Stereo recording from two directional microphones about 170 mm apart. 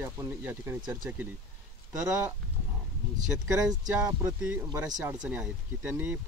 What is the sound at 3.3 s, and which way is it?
Speech, 5° right (ahead or behind).